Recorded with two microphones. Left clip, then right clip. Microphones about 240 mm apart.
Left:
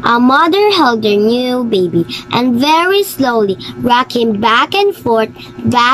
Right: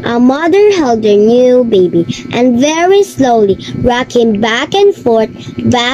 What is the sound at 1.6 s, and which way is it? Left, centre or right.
Speech, centre.